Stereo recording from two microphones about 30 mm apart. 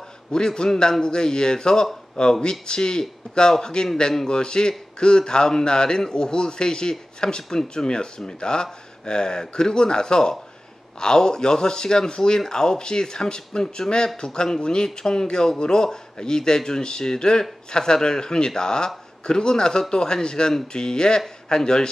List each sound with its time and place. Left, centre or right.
0.3 s speech: left